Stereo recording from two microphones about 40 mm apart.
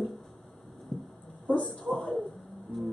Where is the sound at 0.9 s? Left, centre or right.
Centre.